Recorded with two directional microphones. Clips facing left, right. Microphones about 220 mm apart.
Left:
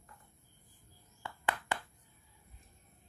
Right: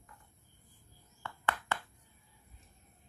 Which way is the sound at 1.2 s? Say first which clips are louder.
Even; 15° left (ahead or behind).